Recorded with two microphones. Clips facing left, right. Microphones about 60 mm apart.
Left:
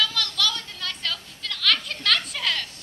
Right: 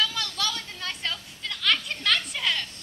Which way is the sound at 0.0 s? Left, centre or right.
Right.